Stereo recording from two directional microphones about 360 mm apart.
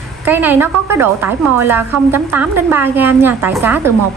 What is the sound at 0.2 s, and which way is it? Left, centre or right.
A woman's voice, centre.